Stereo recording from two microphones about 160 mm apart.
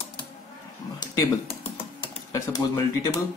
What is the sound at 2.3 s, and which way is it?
Speech, 25° left (ahead or behind).